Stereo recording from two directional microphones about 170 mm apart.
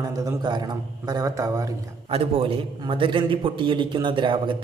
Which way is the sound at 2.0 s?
35° right (ahead or behind).